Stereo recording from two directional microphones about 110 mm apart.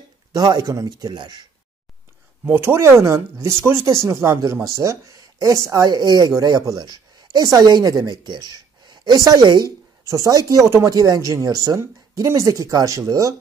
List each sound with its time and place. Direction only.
0.3 s a woman's voice: 35° right (ahead or behind)
2.4 s a woman's voice: 20° right (ahead or behind)